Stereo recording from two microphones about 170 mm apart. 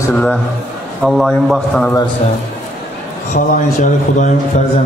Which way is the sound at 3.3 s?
50° left (ahead or behind).